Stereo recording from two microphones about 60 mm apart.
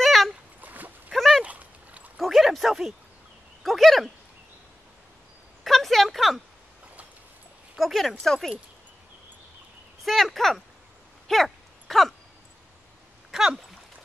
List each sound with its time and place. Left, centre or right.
0.0 s a sound: centre
0.6 s dog: right
1.1 s dog: centre
1.4 s dog: right
2.1 s dog: centre
3.6 s speech: centre
5.6 s speech: centre
7.7 s speech: centre
10.0 s speech: centre
11.2 s a sound: centre